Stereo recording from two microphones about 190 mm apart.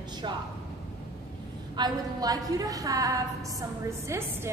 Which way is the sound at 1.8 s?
20° right (ahead or behind).